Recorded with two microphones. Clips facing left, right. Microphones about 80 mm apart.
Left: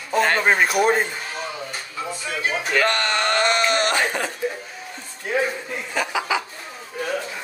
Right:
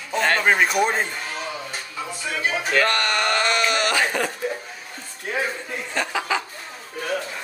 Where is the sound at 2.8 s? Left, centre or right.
Left.